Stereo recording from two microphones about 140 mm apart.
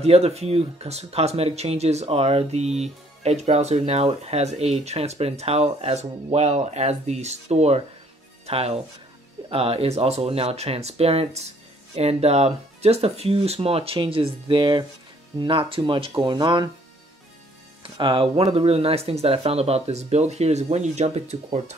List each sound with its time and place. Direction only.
0.0 s speech: 45° right (ahead or behind)
17.8 s speech: 35° right (ahead or behind)